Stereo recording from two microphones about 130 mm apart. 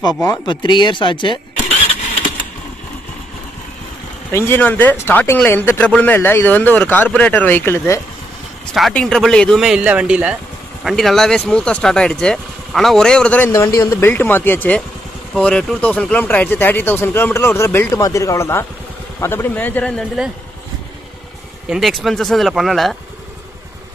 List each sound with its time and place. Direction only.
0.5 s speech: 35° left (ahead or behind)
4.3 s speech: 20° left (ahead or behind)
8.7 s speech: centre (ahead or behind)
13.5 s speech: 25° left (ahead or behind); by 20.1 s 10° left (ahead or behind)
21.6 s speech: centre (ahead or behind)